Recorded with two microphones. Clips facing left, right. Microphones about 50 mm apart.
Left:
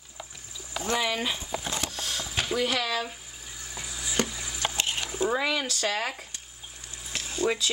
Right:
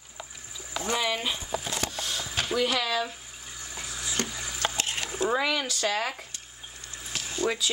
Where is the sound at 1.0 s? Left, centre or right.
Centre.